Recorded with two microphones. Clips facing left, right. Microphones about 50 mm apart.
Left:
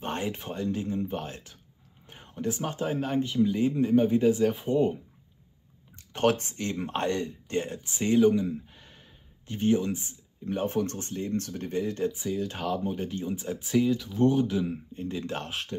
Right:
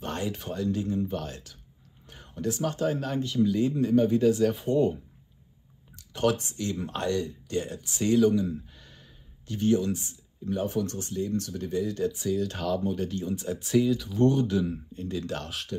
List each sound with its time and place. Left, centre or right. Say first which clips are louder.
0.0 s speech: even; left
5.9 s speech: left 1 dB; left
10.5 s speech: even; left
12.1 s speech: right 3 dB; centre